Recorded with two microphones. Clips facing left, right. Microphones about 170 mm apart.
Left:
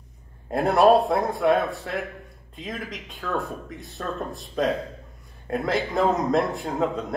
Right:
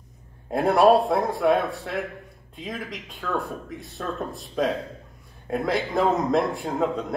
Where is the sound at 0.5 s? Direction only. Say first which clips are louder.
Even; centre (ahead or behind).